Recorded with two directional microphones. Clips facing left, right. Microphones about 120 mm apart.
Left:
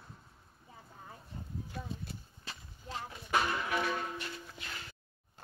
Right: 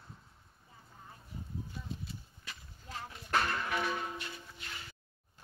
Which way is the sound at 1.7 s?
70° left (ahead or behind).